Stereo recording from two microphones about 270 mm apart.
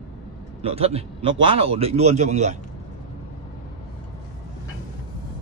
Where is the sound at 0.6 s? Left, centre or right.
Right.